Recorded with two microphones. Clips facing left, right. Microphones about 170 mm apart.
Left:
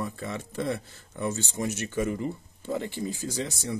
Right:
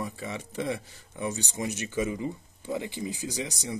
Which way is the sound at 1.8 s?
55° left (ahead or behind).